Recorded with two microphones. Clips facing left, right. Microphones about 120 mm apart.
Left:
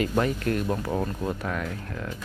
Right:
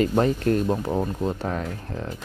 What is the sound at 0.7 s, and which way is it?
Speech, 20° right (ahead or behind).